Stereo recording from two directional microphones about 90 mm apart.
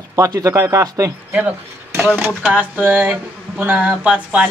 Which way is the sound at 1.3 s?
15° right (ahead or behind).